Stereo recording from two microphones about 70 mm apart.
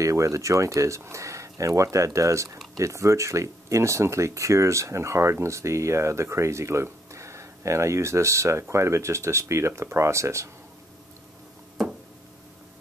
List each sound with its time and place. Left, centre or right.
0.0 s speech: right